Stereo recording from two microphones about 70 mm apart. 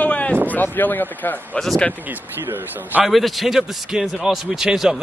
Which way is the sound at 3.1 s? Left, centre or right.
Centre.